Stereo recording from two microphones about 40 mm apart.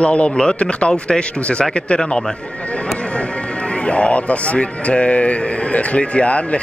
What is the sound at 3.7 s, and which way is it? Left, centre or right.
Speech, left.